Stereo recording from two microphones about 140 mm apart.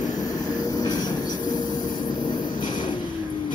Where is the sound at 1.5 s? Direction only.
30° left (ahead or behind).